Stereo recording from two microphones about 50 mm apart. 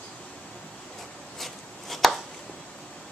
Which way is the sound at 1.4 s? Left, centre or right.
Centre.